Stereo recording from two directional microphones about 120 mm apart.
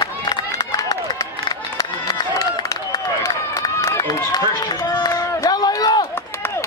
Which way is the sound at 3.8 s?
30° left (ahead or behind).